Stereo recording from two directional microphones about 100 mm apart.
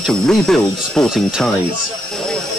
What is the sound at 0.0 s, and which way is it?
Speech, 5° left (ahead or behind).